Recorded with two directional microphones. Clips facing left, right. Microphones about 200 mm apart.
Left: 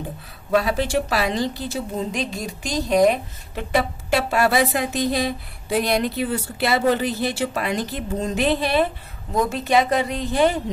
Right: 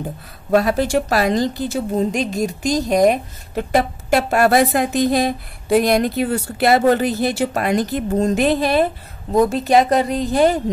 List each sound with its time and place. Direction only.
0.5 s a woman's voice: 45° right (ahead or behind)